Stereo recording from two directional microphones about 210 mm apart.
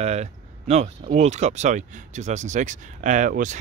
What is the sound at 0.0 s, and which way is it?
Speech, 30° right (ahead or behind).